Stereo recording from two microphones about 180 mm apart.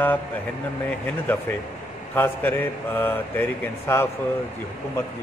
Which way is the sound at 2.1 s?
10° left (ahead or behind).